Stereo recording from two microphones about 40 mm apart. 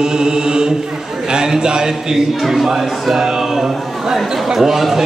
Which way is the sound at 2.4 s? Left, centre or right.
Centre.